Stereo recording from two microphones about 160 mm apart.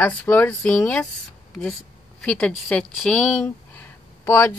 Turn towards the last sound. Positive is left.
turn(degrees=15)  # may be behind; listen again after turning